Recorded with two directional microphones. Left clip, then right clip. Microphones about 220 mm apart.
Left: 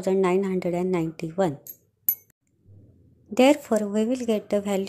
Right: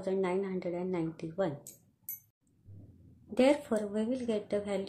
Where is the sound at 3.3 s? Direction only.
35° left (ahead or behind).